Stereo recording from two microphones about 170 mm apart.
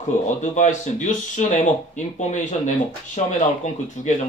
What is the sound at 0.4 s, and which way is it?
Speech, 50° left (ahead or behind).